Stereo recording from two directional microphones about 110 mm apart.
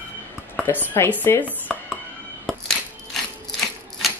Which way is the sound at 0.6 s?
15° left (ahead or behind).